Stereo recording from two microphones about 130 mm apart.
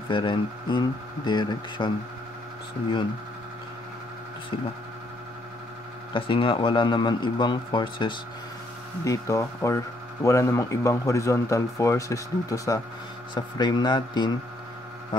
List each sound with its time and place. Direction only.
0.1 s a man's voice: 35° left (ahead or behind)
6.1 s a man's voice: 40° left (ahead or behind)
9.0 s speech: 25° left (ahead or behind)
13.3 s a man's voice: 35° left (ahead or behind)